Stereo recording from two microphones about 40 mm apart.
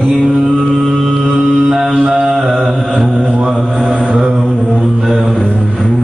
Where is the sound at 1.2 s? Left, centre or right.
Centre.